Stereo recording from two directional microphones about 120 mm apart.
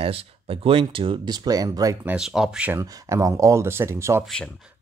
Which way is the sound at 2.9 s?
25° right (ahead or behind).